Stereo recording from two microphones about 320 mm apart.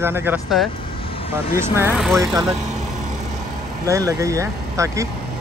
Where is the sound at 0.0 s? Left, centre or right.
Centre.